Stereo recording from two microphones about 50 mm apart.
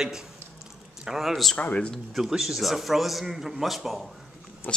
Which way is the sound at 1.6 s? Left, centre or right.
Left.